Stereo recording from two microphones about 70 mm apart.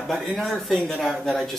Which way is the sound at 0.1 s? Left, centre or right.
Centre.